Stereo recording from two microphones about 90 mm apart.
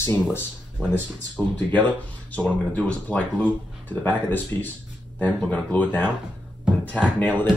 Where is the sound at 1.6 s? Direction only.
20° left (ahead or behind).